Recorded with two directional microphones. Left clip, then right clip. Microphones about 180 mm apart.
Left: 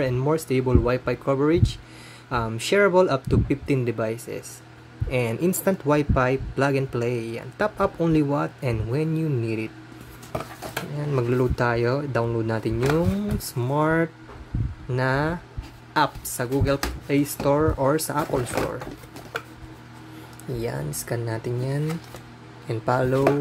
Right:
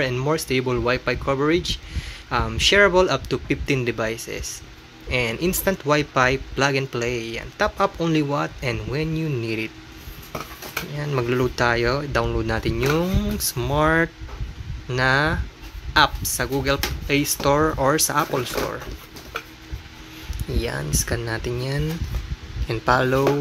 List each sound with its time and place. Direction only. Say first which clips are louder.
0.3 s speech: left 1 dB; 15° left (ahead or behind)
11.0 s speech: right 1 dB; 10° left (ahead or behind)
17.6 s speech: right 2 dB; centre (ahead or behind)
17.9 s speech: right 3 dB; 10° left (ahead or behind)
20.5 s speech: right 4 dB; 5° left (ahead or behind)